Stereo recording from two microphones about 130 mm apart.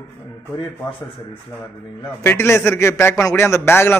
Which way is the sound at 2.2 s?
20° left (ahead or behind).